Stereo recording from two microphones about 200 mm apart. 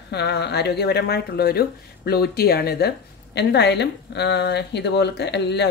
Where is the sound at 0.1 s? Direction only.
55° left (ahead or behind).